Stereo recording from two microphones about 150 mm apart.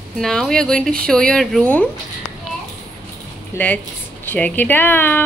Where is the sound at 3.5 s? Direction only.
15° left (ahead or behind).